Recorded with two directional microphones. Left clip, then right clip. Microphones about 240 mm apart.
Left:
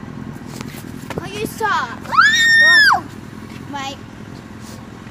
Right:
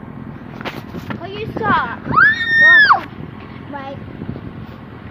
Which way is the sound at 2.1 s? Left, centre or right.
Centre.